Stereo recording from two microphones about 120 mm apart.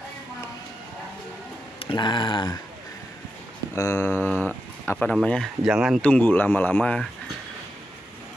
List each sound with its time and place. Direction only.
1.8 s speech: 45° left (ahead or behind)
3.7 s speech: 25° left (ahead or behind); by 5.5 s 5° left (ahead or behind)
5.7 s speech: 5° right (ahead or behind)
5.9 s speech: 10° left (ahead or behind)